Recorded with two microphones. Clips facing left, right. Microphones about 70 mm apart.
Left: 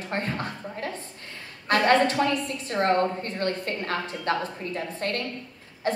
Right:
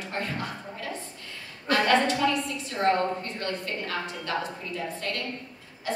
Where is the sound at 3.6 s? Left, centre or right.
Left.